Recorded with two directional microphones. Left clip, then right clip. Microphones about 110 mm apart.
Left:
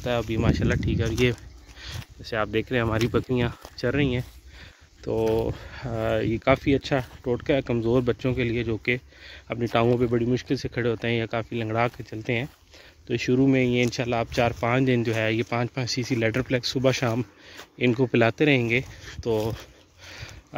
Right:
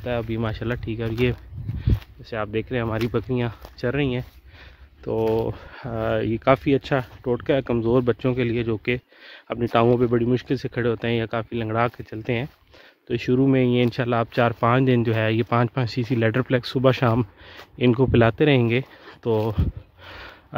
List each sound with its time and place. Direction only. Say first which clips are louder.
0.0 s speech: even; centre (ahead or behind)
0.3 s speech: left 2 dB; 10° right (ahead or behind)
1.3 s a sound: right 1 dB; 10° left (ahead or behind)
3.0 s speech: even; 5° right (ahead or behind)
3.7 s speech: right 1 dB; 15° right (ahead or behind); by 11.9 s 30° right (ahead or behind)
12.1 s speech: right 1 dB; 45° right (ahead or behind)
13.1 s speech: right 2 dB; 35° right (ahead or behind)
15.5 s speech: right 4 dB; 45° right (ahead or behind)
17.7 s speech: right 3 dB; 30° right (ahead or behind)
19.0 s a sound: right 3 dB; 40° right (ahead or behind)